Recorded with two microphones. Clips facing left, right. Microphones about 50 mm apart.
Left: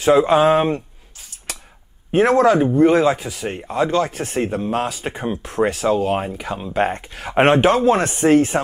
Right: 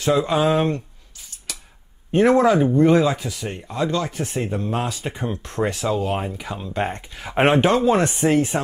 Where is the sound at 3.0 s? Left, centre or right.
Left.